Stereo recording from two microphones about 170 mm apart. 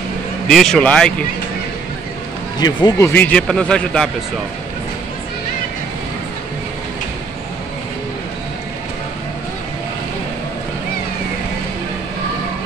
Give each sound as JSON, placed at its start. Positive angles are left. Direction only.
{"t": 0.5, "sound": "speech", "side_deg": 0}
{"t": 2.6, "sound": "speech", "side_deg": 25}
{"t": 3.1, "sound": "speech", "side_deg": 10}